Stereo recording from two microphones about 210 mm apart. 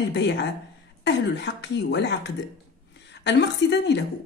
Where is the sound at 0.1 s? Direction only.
55° left (ahead or behind).